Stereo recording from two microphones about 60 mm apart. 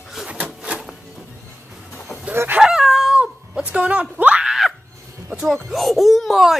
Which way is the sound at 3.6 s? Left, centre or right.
Centre.